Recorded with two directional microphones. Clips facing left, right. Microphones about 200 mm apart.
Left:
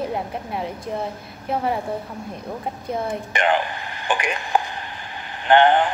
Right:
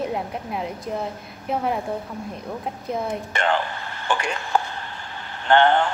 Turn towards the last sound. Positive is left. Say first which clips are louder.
# left 2 dB
turn(degrees=15)  # may be behind; listen again after turning